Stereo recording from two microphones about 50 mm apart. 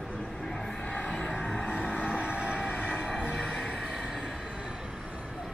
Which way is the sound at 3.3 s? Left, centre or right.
Centre.